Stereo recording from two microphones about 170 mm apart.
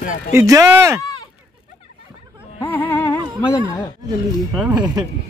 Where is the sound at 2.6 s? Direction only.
15° left (ahead or behind).